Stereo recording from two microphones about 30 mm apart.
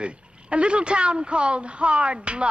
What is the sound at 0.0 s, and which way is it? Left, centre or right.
A woman's voice, right.